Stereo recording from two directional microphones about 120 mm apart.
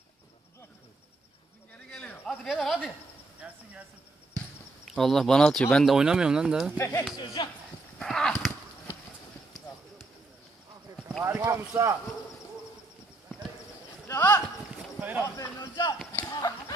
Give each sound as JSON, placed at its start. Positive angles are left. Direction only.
{"t": 1.9, "sound": "a sound", "side_deg": 5}
{"t": 2.4, "sound": "speech", "side_deg": 0}
{"t": 4.8, "sound": "speech", "side_deg": 0}
{"t": 5.9, "sound": "speech", "side_deg": -5}
{"t": 6.8, "sound": "speech", "side_deg": 25}
{"t": 7.4, "sound": "speech", "side_deg": 40}
{"t": 8.0, "sound": "a sound", "side_deg": 5}
{"t": 11.2, "sound": "speech", "side_deg": -25}
{"t": 14.0, "sound": "speech", "side_deg": 20}
{"t": 15.0, "sound": "speech", "side_deg": -15}
{"t": 15.2, "sound": "speech", "side_deg": 25}
{"t": 16.1, "sound": "a sound", "side_deg": 20}